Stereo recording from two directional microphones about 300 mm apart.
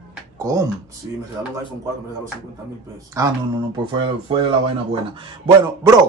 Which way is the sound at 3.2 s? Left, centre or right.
Centre.